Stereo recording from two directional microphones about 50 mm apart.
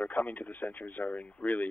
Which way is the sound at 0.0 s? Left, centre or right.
Left.